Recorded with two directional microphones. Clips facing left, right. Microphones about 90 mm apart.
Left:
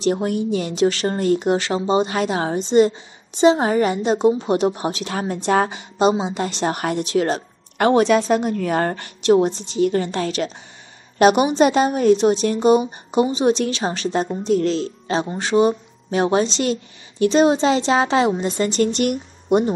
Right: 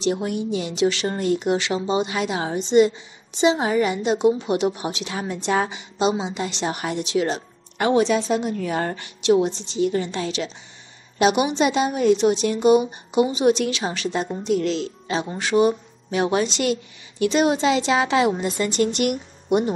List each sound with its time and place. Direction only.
0.0 s a woman's voice: 45° left (ahead or behind)